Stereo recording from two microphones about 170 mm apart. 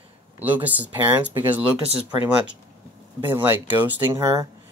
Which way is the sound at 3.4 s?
10° right (ahead or behind).